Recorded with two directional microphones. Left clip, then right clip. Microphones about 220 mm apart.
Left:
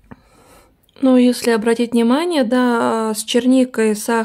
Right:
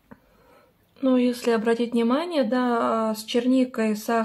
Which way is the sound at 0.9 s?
50° left (ahead or behind).